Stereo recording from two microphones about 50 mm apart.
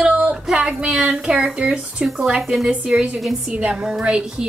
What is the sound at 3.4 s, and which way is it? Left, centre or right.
A woman's voice, centre.